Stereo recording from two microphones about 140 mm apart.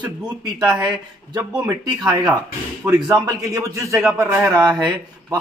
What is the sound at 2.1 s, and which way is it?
Speech, 30° right (ahead or behind).